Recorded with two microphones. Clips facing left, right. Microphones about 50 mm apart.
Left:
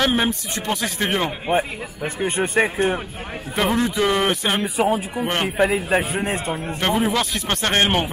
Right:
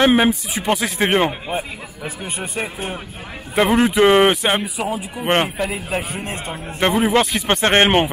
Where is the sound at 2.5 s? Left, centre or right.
Centre.